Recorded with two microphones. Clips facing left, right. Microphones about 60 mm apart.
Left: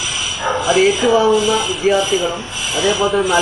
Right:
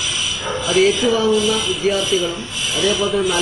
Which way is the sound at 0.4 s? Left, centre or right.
Left.